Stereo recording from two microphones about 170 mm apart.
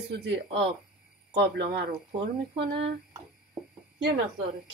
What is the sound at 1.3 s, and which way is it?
Speech, 85° right.